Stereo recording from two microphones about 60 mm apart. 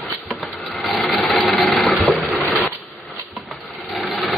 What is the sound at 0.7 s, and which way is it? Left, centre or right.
Sewing machine, centre.